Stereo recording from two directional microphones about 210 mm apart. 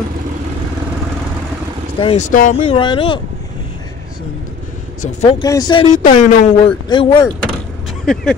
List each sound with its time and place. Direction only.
2.0 s speech: 30° left (ahead or behind)
2.6 s speech: 25° left (ahead or behind)
5.0 s speech: 30° left (ahead or behind)
5.4 s speech: 20° left (ahead or behind)
5.9 s speech: 35° left (ahead or behind)
6.9 s speech: 20° left (ahead or behind)
8.0 s speech: 5° left (ahead or behind)